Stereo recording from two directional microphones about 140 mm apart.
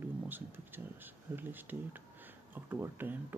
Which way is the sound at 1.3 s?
15° right (ahead or behind).